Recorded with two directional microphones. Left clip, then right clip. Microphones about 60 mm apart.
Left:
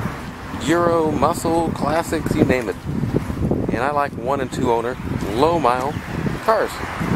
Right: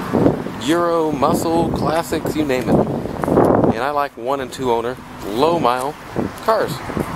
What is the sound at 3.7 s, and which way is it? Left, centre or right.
Speech, centre.